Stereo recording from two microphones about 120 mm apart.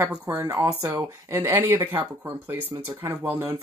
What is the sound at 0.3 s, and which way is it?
Speech, 25° right (ahead or behind).